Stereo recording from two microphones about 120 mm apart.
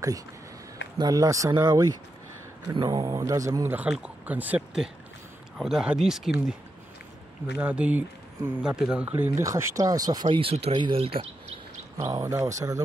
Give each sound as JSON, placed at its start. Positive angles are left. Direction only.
{"t": 0.9, "sound": "speech", "side_deg": -30}
{"t": 7.5, "sound": "speech", "side_deg": -10}
{"t": 9.4, "sound": "speech", "side_deg": -25}
{"t": 10.2, "sound": "speech", "side_deg": -55}
{"t": 12.0, "sound": "speech", "side_deg": -30}